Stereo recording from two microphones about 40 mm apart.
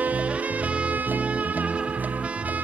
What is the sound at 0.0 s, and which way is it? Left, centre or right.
Music, right.